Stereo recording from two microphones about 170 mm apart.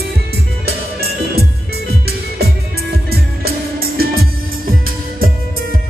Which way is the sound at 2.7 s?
65° right (ahead or behind).